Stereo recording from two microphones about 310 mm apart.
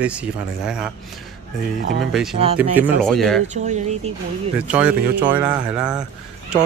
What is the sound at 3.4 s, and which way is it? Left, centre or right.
Speech, right.